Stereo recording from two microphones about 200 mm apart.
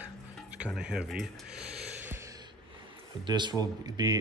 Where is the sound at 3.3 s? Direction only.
20° right (ahead or behind).